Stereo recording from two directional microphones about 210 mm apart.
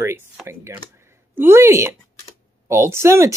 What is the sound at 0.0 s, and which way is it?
Speech, 10° right (ahead or behind).